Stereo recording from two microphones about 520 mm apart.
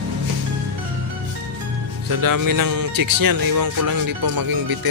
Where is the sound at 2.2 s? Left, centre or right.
Right.